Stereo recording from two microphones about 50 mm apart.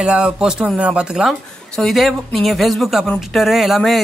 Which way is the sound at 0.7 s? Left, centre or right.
Right.